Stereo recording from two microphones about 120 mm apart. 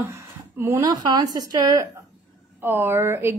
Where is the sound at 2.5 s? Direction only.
15° right (ahead or behind).